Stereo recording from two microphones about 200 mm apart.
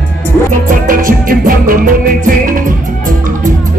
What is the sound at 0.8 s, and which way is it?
Music, 45° right (ahead or behind).